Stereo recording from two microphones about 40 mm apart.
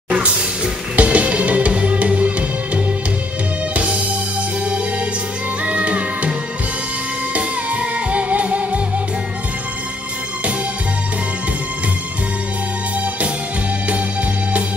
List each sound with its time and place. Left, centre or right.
0.1 s music: right
5.6 s music: right
7.3 s music: right